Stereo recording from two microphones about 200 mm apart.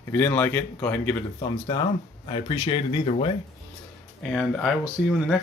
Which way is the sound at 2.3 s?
25° left (ahead or behind).